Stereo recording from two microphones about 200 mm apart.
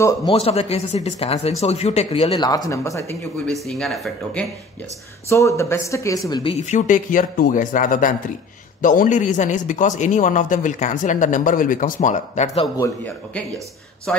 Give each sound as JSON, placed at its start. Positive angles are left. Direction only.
{"t": 0.0, "sound": "a man's voice", "side_deg": 20}
{"t": 3.6, "sound": "speech", "side_deg": 0}
{"t": 5.3, "sound": "speech", "side_deg": 15}
{"t": 6.6, "sound": "a man's voice", "side_deg": 35}
{"t": 12.8, "sound": "speech", "side_deg": 10}